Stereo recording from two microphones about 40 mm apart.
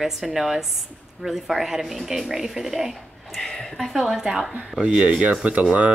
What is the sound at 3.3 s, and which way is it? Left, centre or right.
Speech, centre.